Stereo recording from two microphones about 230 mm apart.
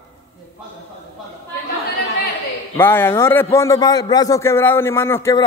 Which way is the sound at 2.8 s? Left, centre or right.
Centre.